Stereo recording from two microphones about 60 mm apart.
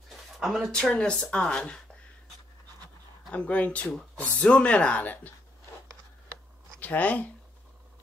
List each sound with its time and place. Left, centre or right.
0.4 s speech: centre
0.9 s speech: centre
3.3 s speech: left
6.8 s speech: left